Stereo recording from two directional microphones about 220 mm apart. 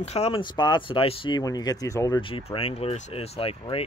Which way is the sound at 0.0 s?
30° left (ahead or behind).